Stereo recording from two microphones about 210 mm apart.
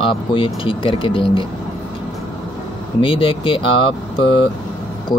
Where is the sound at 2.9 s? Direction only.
25° left (ahead or behind).